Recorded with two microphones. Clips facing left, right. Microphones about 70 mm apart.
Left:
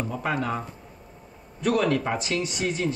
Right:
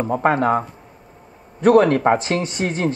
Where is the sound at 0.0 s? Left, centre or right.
Right.